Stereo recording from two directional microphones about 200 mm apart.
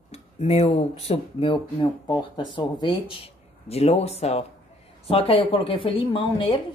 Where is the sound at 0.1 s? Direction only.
30° left (ahead or behind).